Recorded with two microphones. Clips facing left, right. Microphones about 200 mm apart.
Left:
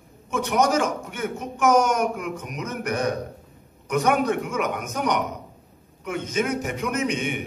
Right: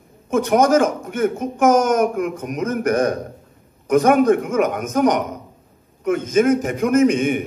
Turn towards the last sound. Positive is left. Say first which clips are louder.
# right 10 dB
turn(degrees=-50)  # may be behind; listen again after turning